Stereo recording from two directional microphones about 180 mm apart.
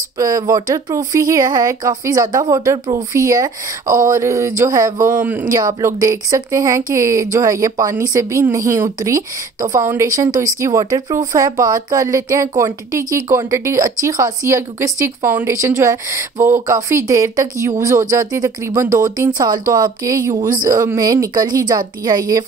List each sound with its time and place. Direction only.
0.2 s speech: 20° right (ahead or behind)
5.5 s a woman's voice: 20° right (ahead or behind)